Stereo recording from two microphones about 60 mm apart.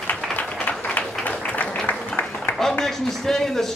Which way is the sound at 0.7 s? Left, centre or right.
Left.